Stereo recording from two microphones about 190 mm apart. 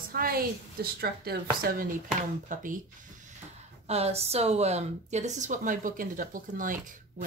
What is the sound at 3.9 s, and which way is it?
A woman's voice, 35° right (ahead or behind).